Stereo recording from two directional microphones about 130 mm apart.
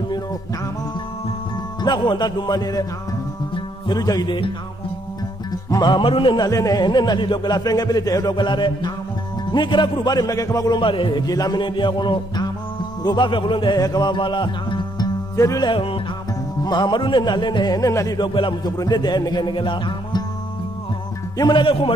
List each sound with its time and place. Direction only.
1.8 s a man's voice: 35° left (ahead or behind)
5.7 s a man's voice: 35° left (ahead or behind)
6.4 s a man's voice: 30° left (ahead or behind)
10.8 s a man's voice: 40° left (ahead or behind)
15.7 s music: 45° left (ahead or behind)
16.6 s a man's voice: 35° left (ahead or behind)
21.4 s a man's voice: 35° left (ahead or behind)